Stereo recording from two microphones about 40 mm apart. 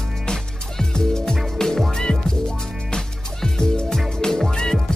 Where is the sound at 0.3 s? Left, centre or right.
Centre.